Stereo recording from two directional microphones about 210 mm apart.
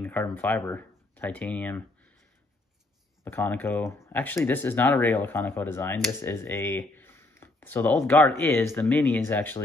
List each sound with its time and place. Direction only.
0.0 s speech: 10° left (ahead or behind)
3.3 s speech: 10° left (ahead or behind)